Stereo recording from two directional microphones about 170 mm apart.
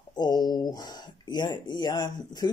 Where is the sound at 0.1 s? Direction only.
25° left (ahead or behind).